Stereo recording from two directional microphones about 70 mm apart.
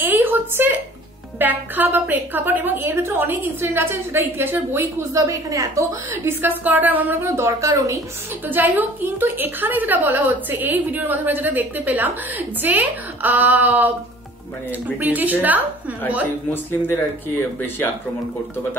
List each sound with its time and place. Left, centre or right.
0.0 s a sound: right
1.4 s a woman's voice: right
5.1 s a woman's voice: right
6.2 s a woman's voice: right
7.2 s a woman's voice: right
8.5 s a woman's voice: right
15.0 s a woman's voice: right
16.8 s speech: left